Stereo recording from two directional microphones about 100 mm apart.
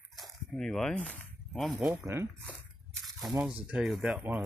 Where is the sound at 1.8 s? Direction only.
20° right (ahead or behind).